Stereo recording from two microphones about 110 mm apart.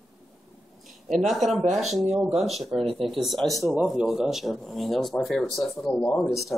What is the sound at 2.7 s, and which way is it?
Speech, 60° right (ahead or behind).